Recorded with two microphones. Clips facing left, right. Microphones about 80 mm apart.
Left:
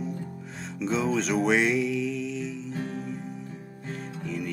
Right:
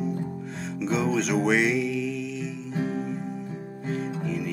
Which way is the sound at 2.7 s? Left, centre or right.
Centre.